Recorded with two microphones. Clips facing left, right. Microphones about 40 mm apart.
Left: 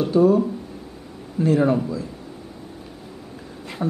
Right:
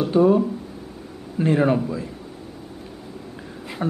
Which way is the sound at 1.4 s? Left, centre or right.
Right.